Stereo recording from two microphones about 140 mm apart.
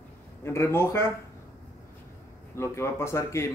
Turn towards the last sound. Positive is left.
turn(degrees=20)  # may be behind; listen again after turning